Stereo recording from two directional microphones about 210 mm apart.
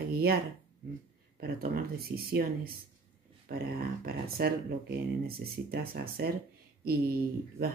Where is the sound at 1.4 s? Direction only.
45° right (ahead or behind).